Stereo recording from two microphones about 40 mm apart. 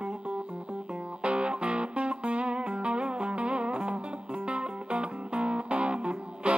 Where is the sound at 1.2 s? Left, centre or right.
Right.